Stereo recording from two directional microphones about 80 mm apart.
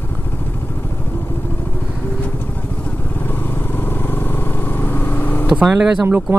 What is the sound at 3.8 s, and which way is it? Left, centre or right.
Vehicle, left.